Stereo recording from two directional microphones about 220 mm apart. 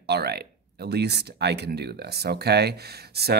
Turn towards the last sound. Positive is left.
turn(degrees=-45)  # may be behind; listen again after turning